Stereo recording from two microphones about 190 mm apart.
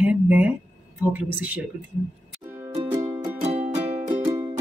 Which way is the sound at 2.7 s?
20° right (ahead or behind).